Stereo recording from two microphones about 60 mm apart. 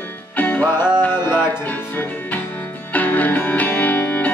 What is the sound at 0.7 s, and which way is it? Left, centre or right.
Music, left.